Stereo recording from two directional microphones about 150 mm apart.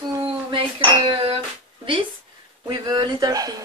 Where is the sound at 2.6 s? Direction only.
25° right (ahead or behind).